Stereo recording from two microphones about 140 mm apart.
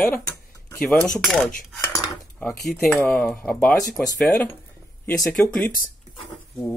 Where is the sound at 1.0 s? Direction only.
5° left (ahead or behind).